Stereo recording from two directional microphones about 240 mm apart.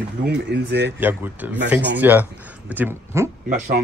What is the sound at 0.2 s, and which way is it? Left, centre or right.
Speech, right.